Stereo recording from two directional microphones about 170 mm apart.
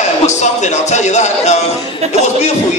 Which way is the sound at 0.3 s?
45° left (ahead or behind).